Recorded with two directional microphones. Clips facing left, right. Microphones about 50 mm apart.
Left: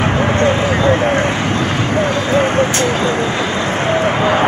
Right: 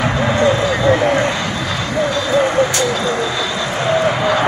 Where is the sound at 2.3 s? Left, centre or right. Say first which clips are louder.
Even; left.